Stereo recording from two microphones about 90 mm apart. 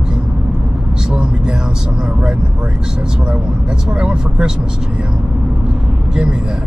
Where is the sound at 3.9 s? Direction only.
10° right (ahead or behind).